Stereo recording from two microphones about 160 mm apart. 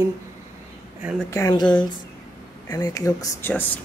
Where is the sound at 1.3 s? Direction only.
20° left (ahead or behind).